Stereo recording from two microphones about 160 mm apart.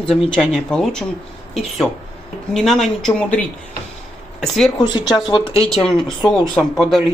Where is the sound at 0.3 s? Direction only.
5° left (ahead or behind).